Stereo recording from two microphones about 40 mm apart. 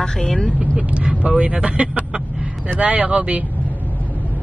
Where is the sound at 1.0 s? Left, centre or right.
Right.